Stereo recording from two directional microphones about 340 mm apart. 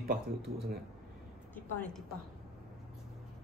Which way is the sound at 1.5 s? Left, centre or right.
Centre.